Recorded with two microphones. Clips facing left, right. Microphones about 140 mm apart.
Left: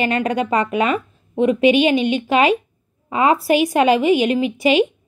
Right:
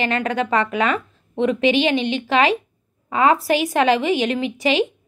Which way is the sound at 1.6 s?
30° right (ahead or behind).